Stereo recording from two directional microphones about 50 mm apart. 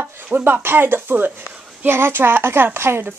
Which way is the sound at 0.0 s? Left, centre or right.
Right.